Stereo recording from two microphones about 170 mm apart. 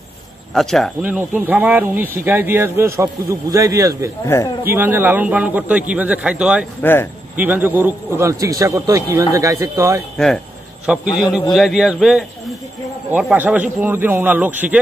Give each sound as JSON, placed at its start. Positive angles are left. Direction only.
{"t": 0.6, "sound": "speech", "side_deg": 5}
{"t": 1.0, "sound": "a man's voice", "side_deg": -10}
{"t": 4.2, "sound": "speech", "side_deg": 20}
{"t": 4.6, "sound": "a man's voice", "side_deg": -15}
{"t": 6.8, "sound": "speech", "side_deg": 10}
{"t": 7.3, "sound": "a man's voice", "side_deg": -10}
{"t": 10.1, "sound": "a man's voice", "side_deg": 5}